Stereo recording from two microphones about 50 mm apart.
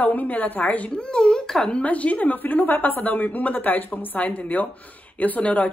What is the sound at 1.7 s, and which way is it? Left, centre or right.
Speech, left.